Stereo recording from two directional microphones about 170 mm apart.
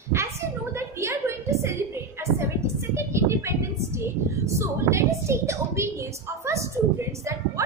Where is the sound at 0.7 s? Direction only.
15° right (ahead or behind).